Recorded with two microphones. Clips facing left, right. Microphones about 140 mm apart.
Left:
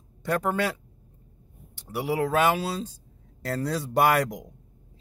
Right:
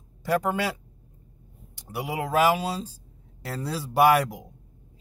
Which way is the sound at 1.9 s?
10° right (ahead or behind).